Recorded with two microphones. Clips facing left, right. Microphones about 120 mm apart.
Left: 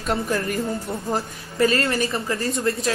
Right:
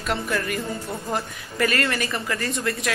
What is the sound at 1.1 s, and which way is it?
Speech, 30° left (ahead or behind).